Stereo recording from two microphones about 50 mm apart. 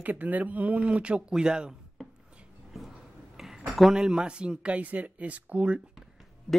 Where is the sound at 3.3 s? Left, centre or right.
Centre.